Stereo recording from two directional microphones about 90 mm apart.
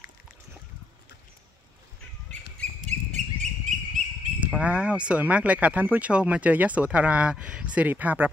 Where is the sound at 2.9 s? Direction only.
15° left (ahead or behind).